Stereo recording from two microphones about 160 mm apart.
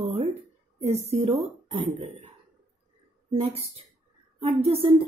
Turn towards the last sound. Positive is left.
turn(degrees=-35)  # may be behind; listen again after turning